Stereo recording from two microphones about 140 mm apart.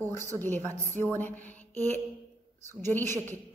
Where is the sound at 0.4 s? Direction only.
15° left (ahead or behind).